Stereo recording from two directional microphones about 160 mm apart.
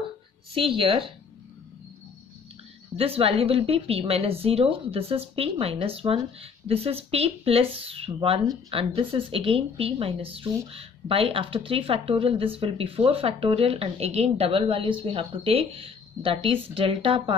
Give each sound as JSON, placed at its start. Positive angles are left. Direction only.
{"t": 0.6, "sound": "a woman's voice", "side_deg": -35}
{"t": 3.0, "sound": "a woman's voice", "side_deg": -35}